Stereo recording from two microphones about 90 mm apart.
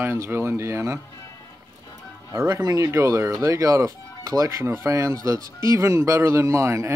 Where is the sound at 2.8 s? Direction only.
35° right (ahead or behind).